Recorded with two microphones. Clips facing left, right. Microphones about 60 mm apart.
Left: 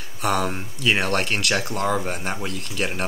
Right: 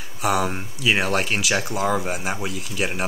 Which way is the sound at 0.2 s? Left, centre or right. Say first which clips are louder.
Right 1 dB; centre.